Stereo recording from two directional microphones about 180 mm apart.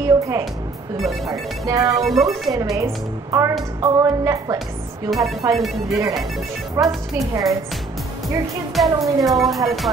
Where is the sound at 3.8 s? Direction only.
20° right (ahead or behind).